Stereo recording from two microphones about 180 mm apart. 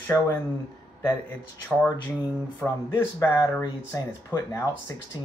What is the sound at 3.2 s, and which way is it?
Speech, 20° left (ahead or behind).